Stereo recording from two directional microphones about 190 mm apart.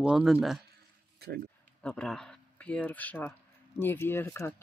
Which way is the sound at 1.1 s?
55° right (ahead or behind).